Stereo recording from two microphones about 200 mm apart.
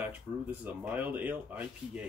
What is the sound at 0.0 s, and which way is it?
Speech, 10° right (ahead or behind).